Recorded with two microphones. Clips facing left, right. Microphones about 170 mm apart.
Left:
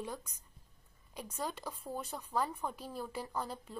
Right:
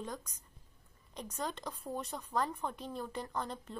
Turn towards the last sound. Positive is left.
turn(degrees=5)  # may be behind; listen again after turning